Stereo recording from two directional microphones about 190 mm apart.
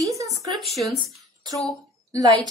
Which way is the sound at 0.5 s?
Centre (ahead or behind).